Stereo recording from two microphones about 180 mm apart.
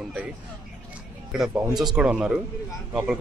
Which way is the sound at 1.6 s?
25° right (ahead or behind).